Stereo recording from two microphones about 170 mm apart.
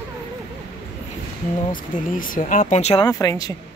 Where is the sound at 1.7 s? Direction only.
55° left (ahead or behind).